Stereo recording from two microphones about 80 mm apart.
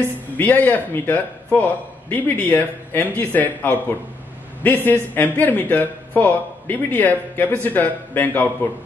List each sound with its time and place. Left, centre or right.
0.4 s a man's voice: left